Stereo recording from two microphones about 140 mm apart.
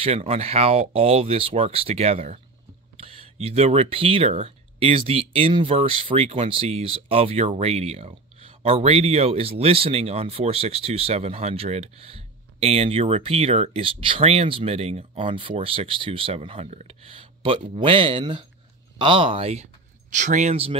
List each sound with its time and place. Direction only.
0.0 s speech: 45° right (ahead or behind)